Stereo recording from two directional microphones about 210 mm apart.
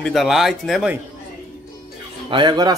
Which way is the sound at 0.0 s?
Centre (ahead or behind).